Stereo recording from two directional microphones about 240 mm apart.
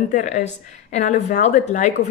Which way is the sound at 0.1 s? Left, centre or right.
Left.